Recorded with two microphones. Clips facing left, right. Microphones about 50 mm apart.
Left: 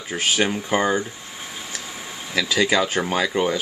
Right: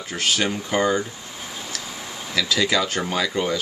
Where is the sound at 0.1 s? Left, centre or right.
Centre.